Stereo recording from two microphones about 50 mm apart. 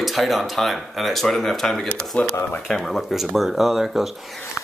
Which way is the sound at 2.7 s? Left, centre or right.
Centre.